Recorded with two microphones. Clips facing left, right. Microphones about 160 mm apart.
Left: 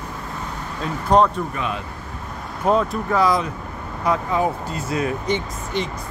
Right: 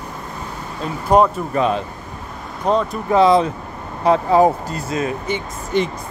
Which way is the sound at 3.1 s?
25° right (ahead or behind).